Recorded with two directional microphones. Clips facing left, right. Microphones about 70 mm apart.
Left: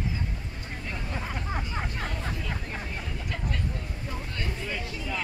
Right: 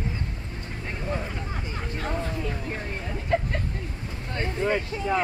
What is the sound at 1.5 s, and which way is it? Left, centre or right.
Vehicle, left.